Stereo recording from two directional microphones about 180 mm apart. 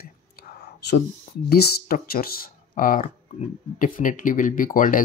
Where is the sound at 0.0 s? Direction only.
60° left (ahead or behind).